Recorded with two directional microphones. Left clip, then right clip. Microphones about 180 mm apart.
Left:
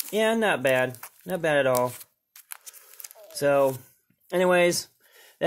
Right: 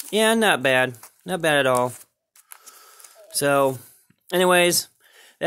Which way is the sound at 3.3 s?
35° right (ahead or behind).